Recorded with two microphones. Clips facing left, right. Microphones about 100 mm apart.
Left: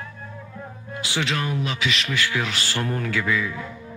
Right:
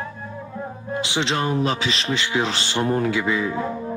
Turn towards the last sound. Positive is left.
turn(degrees=-40)  # may be behind; listen again after turning